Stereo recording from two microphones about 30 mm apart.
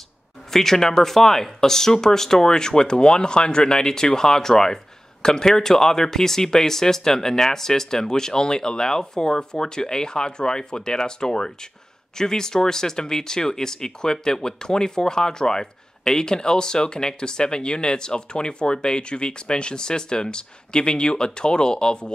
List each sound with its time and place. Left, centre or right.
0.5 s speech: centre; by 22.1 s left